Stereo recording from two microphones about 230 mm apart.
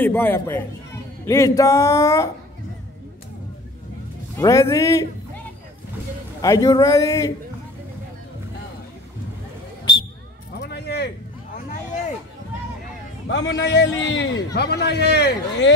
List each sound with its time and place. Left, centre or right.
0.0 s speech: centre
4.4 s speech: centre
6.4 s speech: centre
10.6 s a sound: left
13.3 s a man's voice: left